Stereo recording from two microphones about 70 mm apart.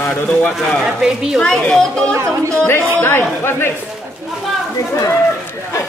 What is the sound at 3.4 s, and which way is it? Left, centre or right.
Speech, left.